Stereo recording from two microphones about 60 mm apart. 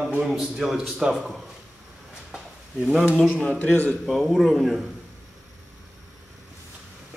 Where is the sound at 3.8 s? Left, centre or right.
Centre.